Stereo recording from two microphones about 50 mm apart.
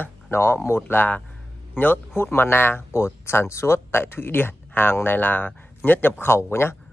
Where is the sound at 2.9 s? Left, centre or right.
Left.